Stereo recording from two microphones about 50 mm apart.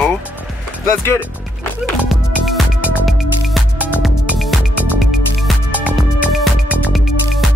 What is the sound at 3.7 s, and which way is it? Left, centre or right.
Music, right.